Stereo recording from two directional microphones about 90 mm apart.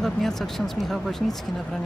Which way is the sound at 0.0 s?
5° left (ahead or behind).